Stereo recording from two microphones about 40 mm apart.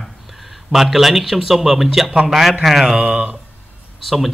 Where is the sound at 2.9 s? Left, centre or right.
Right.